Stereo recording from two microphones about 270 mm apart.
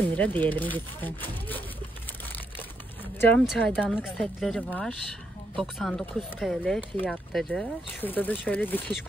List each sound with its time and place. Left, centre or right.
0.2 s speech: centre
3.2 s speech: centre